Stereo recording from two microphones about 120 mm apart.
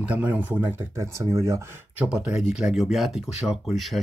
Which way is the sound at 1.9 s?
10° right (ahead or behind).